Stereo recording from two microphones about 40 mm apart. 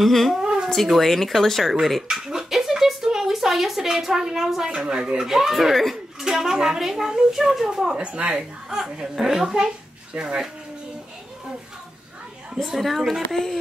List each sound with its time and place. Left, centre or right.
0.0 s speech: centre
0.4 s a sound: centre
0.8 s speech: centre
1.7 s a sound: centre
4.6 s speech: right
5.2 s a woman's voice: centre; by 8.4 s right
8.4 s a woman's voice: centre
12.6 s speech: centre